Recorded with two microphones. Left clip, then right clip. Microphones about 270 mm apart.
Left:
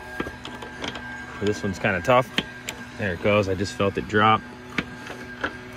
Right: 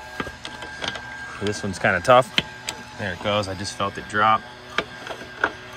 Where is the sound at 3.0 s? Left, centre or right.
Centre.